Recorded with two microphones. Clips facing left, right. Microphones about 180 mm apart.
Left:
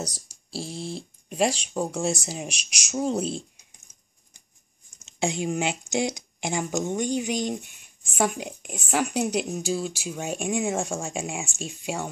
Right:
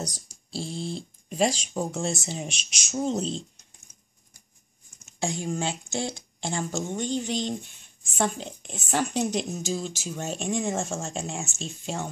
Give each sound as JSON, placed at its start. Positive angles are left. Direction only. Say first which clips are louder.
{"t": 0.5, "sound": "speech", "louder": "right 1 dB", "side_deg": 5}
{"t": 5.0, "sound": "speech", "louder": "left 3 dB", "side_deg": 20}